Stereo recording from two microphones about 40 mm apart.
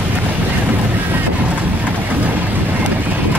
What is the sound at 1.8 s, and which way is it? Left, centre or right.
Vehicle, right.